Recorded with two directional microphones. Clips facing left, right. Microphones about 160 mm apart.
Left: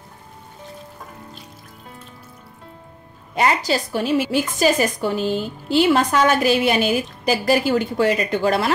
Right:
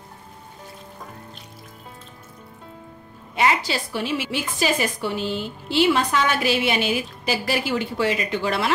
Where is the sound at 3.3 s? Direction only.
40° left (ahead or behind).